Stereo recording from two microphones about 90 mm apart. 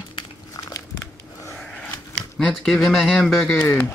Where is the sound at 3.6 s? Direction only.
20° left (ahead or behind).